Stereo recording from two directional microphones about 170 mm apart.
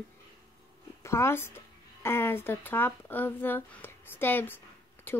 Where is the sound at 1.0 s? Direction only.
15° left (ahead or behind).